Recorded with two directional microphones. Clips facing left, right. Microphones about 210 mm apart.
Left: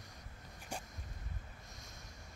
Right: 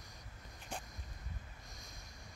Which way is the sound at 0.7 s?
10° left (ahead or behind).